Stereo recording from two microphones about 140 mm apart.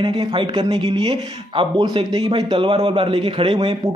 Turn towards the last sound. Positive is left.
turn(degrees=-35)  # may be behind; listen again after turning